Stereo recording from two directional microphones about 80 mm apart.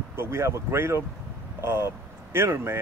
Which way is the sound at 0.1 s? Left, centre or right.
Right.